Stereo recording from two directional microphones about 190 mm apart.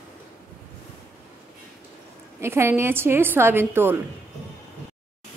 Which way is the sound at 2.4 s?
15° right (ahead or behind).